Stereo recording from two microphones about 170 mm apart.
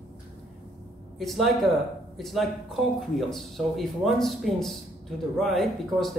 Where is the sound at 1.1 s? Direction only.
Centre (ahead or behind).